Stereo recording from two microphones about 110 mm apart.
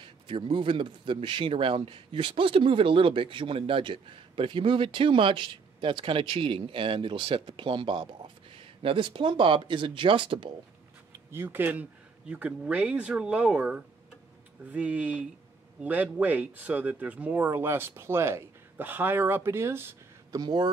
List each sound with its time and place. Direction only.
0.0 s a man's voice: 50° right (ahead or behind)
11.3 s speech: 20° right (ahead or behind)
20.3 s speech: 40° right (ahead or behind)